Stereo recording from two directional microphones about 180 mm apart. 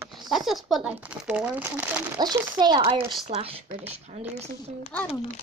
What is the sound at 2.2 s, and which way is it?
Speech, 20° right (ahead or behind).